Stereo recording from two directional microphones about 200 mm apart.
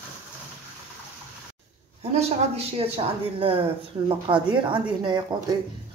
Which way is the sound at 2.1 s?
30° right (ahead or behind).